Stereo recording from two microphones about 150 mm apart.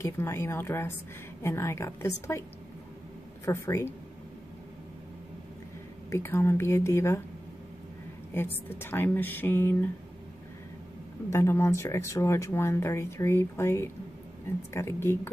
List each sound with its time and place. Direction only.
0.0 s speech: 15° left (ahead or behind)
3.4 s speech: 20° left (ahead or behind)
6.0 s speech: 15° left (ahead or behind)
8.4 s speech: 15° left (ahead or behind)
11.3 s speech: 15° left (ahead or behind)